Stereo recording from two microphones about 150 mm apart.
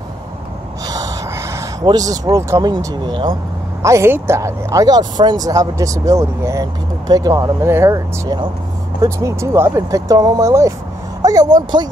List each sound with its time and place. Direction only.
0.8 s gasp: 25° right (ahead or behind)
1.9 s speech: 25° right (ahead or behind)
3.8 s speech: 20° right (ahead or behind)